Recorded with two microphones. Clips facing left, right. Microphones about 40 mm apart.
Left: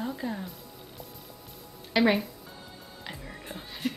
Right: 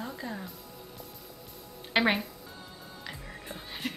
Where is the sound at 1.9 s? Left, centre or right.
Right.